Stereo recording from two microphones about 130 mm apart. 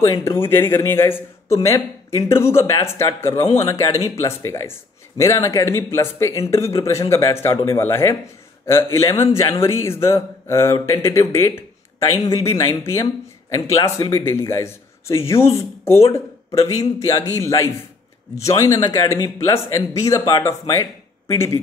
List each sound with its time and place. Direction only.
0.0 s speech: 25° left (ahead or behind)